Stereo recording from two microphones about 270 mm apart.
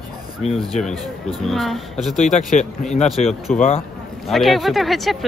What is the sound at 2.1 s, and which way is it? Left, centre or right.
Speech, left.